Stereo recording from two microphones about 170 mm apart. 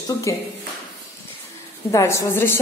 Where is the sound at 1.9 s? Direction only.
15° left (ahead or behind).